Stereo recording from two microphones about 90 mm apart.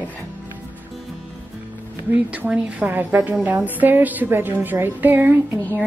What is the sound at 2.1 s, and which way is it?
A woman's voice, 15° right (ahead or behind).